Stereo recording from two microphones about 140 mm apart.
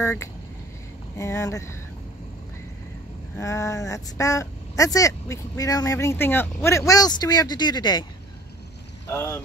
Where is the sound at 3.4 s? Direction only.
20° left (ahead or behind).